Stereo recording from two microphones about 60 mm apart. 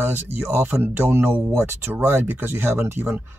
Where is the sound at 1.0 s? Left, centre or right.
Right.